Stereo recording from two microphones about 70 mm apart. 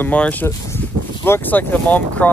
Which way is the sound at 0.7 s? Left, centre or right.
Left.